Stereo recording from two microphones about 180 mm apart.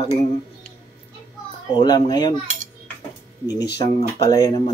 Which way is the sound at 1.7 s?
20° left (ahead or behind).